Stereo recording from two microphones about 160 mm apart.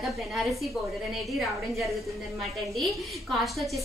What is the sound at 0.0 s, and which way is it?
A woman's voice, centre (ahead or behind).